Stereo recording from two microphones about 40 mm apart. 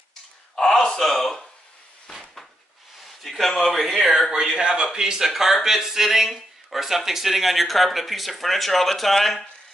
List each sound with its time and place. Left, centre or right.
0.6 s a sound: centre
3.2 s speech: centre
4.3 s a man's voice: centre
5.3 s speech: centre